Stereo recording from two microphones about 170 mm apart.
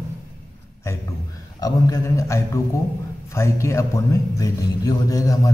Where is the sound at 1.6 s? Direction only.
20° left (ahead or behind).